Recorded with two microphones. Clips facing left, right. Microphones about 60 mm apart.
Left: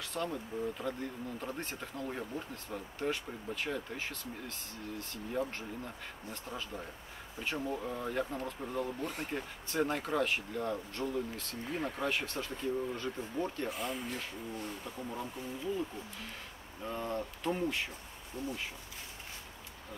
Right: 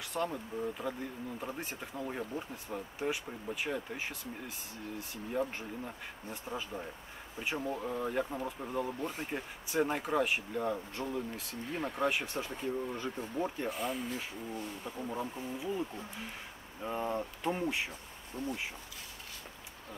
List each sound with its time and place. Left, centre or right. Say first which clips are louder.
0.0 s speech: right 2 dB; centre
14.9 s speech: right 3 dB; centre
16.8 s speech: right 2 dB; centre
18.4 s speech: right 1 dB; right